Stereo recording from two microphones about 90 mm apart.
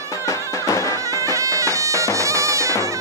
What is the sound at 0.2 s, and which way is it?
Music, 40° left (ahead or behind).